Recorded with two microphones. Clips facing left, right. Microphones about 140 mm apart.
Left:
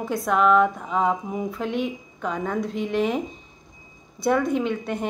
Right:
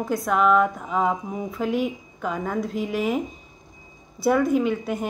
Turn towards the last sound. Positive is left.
turn(degrees=-5)  # may be behind; listen again after turning